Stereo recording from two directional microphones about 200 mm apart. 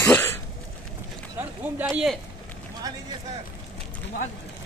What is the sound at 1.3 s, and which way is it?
Run, 10° right (ahead or behind).